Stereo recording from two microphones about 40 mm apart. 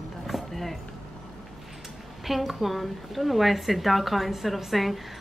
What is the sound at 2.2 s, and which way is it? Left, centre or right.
A woman's voice, centre.